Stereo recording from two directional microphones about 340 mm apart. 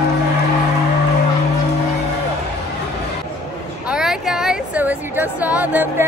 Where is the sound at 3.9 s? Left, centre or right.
Centre.